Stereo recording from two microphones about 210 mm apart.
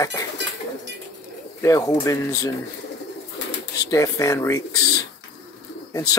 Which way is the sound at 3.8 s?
15° left (ahead or behind).